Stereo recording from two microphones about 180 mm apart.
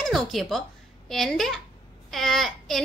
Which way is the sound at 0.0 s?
Centre (ahead or behind).